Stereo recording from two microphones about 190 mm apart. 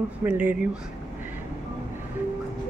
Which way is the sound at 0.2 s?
10° right (ahead or behind).